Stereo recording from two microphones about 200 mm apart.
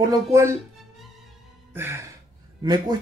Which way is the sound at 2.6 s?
20° right (ahead or behind).